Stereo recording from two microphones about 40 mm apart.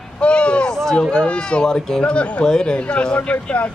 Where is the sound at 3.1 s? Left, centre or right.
Left.